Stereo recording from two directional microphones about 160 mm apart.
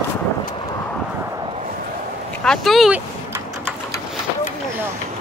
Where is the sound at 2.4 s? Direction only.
Centre (ahead or behind).